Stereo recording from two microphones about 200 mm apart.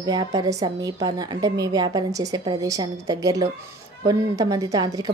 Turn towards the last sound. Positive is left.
turn(degrees=-20)  # may be behind; listen again after turning